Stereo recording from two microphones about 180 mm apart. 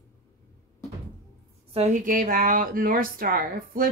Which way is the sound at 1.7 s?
40° right (ahead or behind).